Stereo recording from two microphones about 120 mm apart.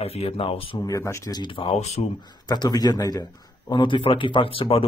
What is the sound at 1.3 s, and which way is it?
Speech, 45° left (ahead or behind).